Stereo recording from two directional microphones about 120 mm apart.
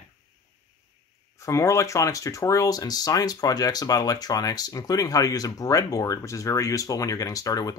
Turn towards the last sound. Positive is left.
turn(degrees=30)  # may be behind; listen again after turning